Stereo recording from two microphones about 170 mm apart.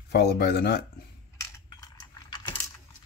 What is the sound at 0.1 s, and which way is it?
Speech, 70° left (ahead or behind).